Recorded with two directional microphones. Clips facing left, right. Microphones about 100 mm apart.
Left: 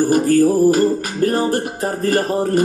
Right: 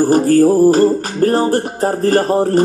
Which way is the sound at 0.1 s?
35° right (ahead or behind).